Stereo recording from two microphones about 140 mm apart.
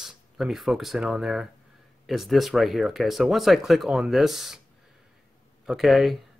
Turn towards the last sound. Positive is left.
turn(degrees=0)  # may be behind; listen again after turning